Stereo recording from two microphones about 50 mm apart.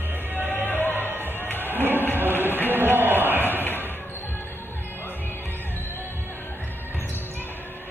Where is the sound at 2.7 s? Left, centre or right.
Right.